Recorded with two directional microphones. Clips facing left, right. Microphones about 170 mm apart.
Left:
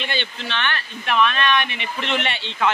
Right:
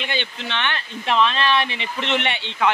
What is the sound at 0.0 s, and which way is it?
Speech, 15° right (ahead or behind).